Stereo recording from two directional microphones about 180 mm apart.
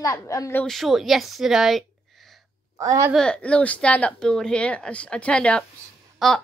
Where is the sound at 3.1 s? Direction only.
5° left (ahead or behind).